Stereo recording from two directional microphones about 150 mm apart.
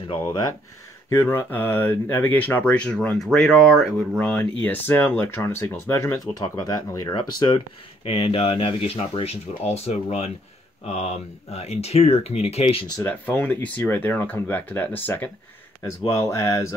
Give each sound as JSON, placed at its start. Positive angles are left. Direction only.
{"t": 1.1, "sound": "speech", "side_deg": 15}
{"t": 4.6, "sound": "speech", "side_deg": 10}
{"t": 11.5, "sound": "speech", "side_deg": 45}
{"t": 13.0, "sound": "speech", "side_deg": 10}